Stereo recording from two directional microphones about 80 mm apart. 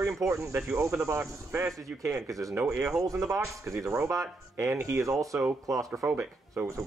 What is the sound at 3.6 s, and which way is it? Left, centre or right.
Speech, right.